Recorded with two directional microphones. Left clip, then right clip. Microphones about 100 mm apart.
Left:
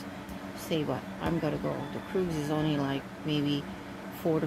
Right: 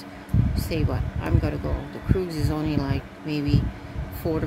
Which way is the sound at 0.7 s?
25° right (ahead or behind).